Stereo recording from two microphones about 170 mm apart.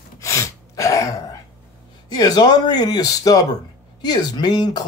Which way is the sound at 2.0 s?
25° left (ahead or behind).